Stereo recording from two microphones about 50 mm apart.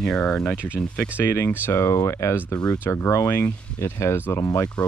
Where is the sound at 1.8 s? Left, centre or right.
Left.